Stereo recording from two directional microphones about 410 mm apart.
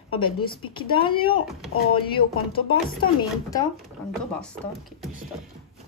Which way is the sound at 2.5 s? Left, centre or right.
Centre.